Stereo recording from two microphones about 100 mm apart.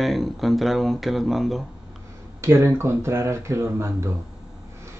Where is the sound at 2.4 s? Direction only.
30° right (ahead or behind).